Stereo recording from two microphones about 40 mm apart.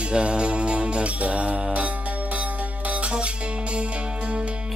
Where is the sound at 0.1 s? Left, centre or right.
Right.